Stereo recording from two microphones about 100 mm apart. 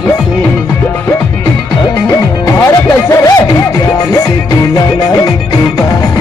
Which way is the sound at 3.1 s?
30° left (ahead or behind).